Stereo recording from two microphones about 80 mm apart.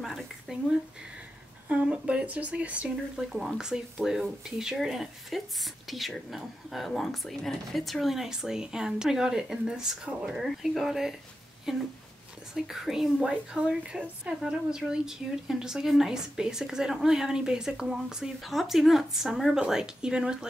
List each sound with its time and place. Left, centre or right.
0.0 s a sound: centre
1.7 s a woman's voice: centre
3.2 s a woman's voice: centre